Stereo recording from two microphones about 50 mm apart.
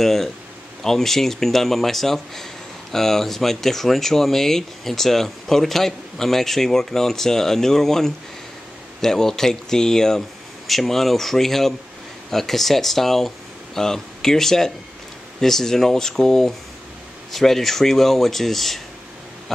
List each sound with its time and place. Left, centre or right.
0.0 s speech: centre